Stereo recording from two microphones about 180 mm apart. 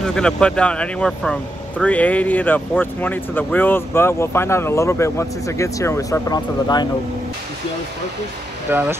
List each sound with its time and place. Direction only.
0.0 s speech: 5° left (ahead or behind); by 6.9 s 25° left (ahead or behind)
8.7 s speech: 10° right (ahead or behind)